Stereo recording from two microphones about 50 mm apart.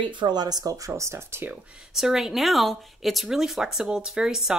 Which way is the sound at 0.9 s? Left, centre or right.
Right.